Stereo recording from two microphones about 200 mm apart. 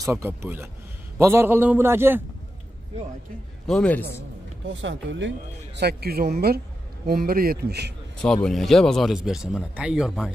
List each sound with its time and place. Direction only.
0.1 s a man's voice: 10° right (ahead or behind)
3.6 s speech: 5° left (ahead or behind)
4.8 s speech: 65° right (ahead or behind)
5.8 s speech: 55° right (ahead or behind)
8.2 s speech: 5° left (ahead or behind)